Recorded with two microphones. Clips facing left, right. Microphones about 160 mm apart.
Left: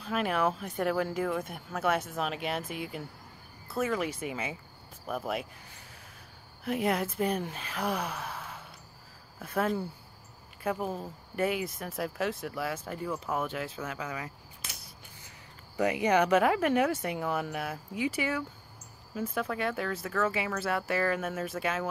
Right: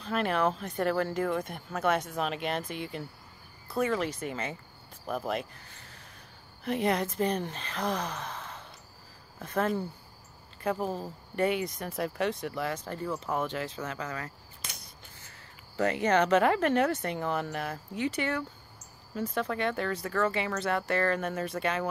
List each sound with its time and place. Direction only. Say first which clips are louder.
0.0 s speech: right 1 dB; 5° left (ahead or behind)